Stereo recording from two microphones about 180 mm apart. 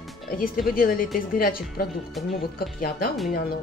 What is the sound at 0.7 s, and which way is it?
Speech, 50° left (ahead or behind).